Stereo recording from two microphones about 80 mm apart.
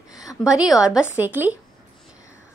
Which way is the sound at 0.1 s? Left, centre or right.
Left.